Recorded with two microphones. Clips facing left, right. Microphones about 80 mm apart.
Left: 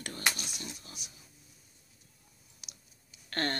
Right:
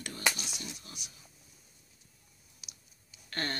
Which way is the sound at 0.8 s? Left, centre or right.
Left.